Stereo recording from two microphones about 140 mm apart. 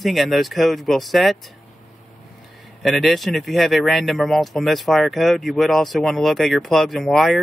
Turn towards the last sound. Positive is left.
turn(degrees=0)  # may be behind; listen again after turning